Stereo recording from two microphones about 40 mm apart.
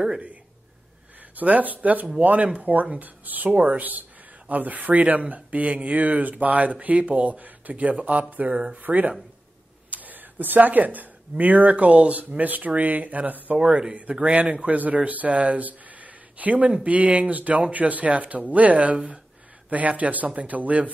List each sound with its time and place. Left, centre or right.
1.3 s speech: right
8.5 s speech: right
8.8 s speech: right
13.6 s speech: right
14.2 s speech: right